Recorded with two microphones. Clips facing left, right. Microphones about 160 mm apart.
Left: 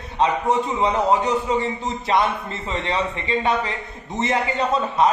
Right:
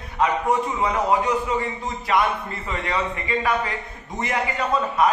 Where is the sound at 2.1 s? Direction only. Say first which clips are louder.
Left 1 dB; 30° left (ahead or behind).